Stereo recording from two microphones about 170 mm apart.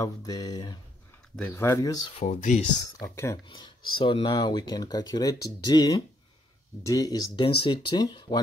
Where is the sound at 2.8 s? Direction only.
20° left (ahead or behind).